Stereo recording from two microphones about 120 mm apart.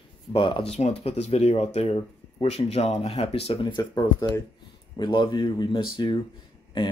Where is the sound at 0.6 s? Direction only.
65° left (ahead or behind).